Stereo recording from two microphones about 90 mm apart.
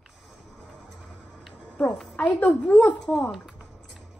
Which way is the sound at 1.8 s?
15° left (ahead or behind).